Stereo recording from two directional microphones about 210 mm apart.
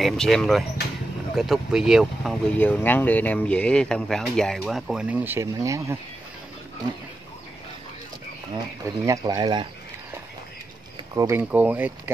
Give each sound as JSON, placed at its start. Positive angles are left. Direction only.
{"t": 0.0, "sound": "speech", "side_deg": 0}
{"t": 8.8, "sound": "speech", "side_deg": -15}
{"t": 11.1, "sound": "speech", "side_deg": -10}